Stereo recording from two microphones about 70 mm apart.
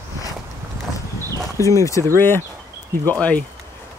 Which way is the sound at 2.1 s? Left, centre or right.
Left.